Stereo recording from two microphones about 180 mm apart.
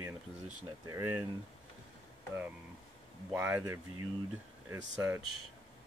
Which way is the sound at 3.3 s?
10° right (ahead or behind).